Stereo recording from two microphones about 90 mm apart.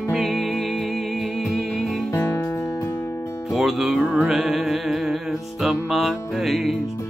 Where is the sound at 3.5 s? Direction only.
5° right (ahead or behind).